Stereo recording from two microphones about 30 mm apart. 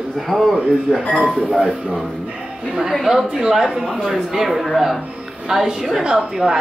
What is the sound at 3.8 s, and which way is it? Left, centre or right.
Speech, centre.